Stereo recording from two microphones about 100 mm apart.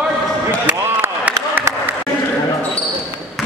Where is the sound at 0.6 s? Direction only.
20° right (ahead or behind).